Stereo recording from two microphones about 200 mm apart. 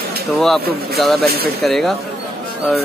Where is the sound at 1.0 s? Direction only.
Centre (ahead or behind).